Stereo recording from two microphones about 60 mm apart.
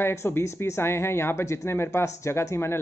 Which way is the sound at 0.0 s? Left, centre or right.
Left.